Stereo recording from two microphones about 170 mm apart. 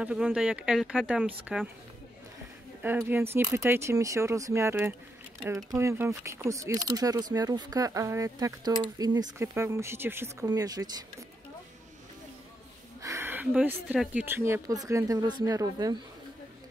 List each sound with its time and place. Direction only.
0.0 s speech: 5° right (ahead or behind)
2.8 s speech: 10° right (ahead or behind)
13.0 s a sound: 15° right (ahead or behind)
13.8 s speech: 10° right (ahead or behind)